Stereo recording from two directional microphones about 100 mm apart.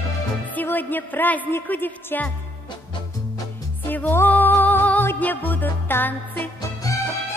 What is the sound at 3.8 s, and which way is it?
Music, 20° left (ahead or behind).